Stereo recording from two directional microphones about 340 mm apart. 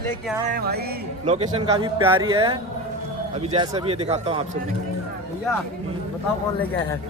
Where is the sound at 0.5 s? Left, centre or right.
Right.